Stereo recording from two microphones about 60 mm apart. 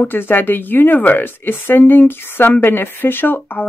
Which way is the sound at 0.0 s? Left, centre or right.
Left.